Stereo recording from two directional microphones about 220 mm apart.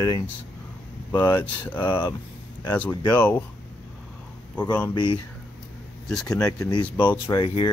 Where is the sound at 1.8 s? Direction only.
20° left (ahead or behind).